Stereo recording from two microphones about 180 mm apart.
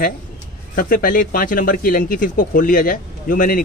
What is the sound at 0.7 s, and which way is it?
Speech, 50° left (ahead or behind).